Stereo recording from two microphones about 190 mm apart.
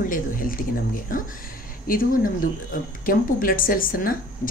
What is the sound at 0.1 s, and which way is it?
Speech, 45° left (ahead or behind).